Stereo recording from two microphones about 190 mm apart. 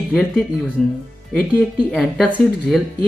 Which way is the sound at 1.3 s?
5° left (ahead or behind).